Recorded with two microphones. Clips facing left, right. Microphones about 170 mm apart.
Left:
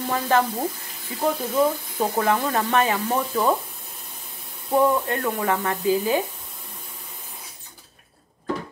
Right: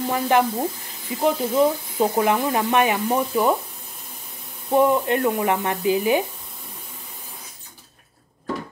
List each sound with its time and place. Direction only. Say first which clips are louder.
0.1 s speech: right 2 dB; 15° right (ahead or behind)
4.6 s speech: right 2 dB; 20° right (ahead or behind)